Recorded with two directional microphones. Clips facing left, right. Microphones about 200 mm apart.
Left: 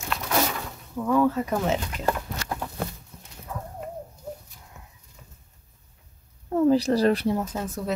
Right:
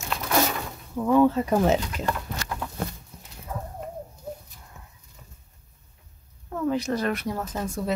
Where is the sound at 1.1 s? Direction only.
25° right (ahead or behind).